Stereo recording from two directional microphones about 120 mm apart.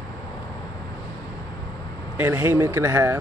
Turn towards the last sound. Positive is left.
turn(degrees=-20)  # may be behind; listen again after turning